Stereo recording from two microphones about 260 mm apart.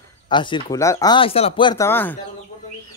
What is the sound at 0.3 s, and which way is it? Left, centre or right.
Speech, centre.